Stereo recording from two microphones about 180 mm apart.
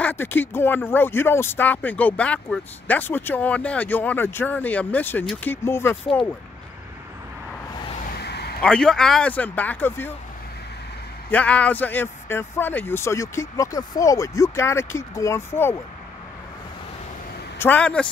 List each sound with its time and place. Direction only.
0.0 s speech: 10° left (ahead or behind)
8.1 s a sound: 65° left (ahead or behind)
8.6 s speech: 5° left (ahead or behind)
11.2 s speech: 10° left (ahead or behind)
17.6 s speech: 10° left (ahead or behind)